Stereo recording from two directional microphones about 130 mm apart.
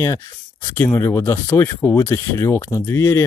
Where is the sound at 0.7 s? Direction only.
20° left (ahead or behind).